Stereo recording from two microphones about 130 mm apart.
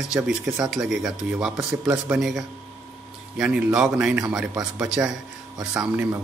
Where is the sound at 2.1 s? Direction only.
5° right (ahead or behind).